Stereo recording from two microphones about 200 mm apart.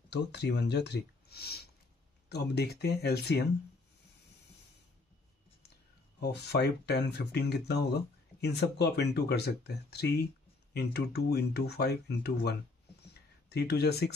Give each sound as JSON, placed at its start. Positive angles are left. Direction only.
{"t": 0.1, "sound": "speech", "side_deg": 55}
{"t": 6.1, "sound": "speech", "side_deg": 55}
{"t": 13.0, "sound": "a sound", "side_deg": 55}